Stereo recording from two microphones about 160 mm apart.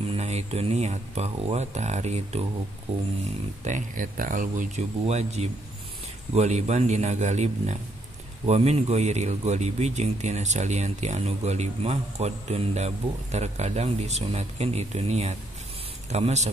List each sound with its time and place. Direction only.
0.1 s speech: 45° right (ahead or behind)
3.6 s speech: 50° right (ahead or behind)
5.0 s speech: 40° right (ahead or behind)